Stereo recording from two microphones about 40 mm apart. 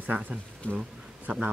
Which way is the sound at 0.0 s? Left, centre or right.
Right.